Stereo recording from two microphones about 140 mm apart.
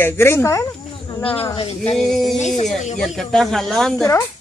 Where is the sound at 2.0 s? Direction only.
Centre (ahead or behind).